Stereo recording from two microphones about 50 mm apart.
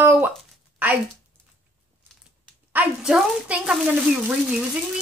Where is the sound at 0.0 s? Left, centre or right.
Right.